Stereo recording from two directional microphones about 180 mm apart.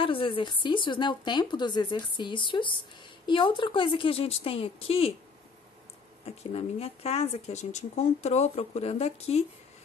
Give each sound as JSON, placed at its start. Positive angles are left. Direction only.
{"t": 0.0, "sound": "speech", "side_deg": 30}
{"t": 6.2, "sound": "speech", "side_deg": 35}